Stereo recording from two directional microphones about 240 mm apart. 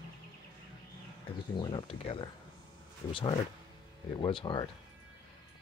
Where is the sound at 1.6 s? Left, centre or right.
Centre.